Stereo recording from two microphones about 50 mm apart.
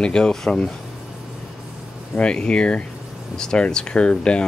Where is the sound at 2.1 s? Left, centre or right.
Centre.